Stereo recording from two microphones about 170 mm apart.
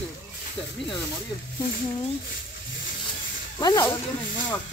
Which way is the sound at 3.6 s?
20° left (ahead or behind).